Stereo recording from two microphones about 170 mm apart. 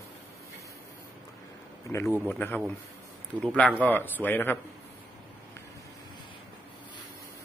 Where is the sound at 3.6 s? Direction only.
10° left (ahead or behind).